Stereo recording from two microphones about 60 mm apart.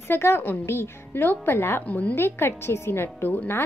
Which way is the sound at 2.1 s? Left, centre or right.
Left.